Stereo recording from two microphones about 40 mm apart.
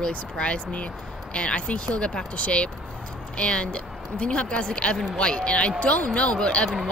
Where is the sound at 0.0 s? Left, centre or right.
Left.